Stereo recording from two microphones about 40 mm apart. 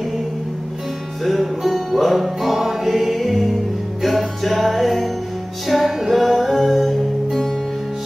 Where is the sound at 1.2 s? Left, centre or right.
Centre.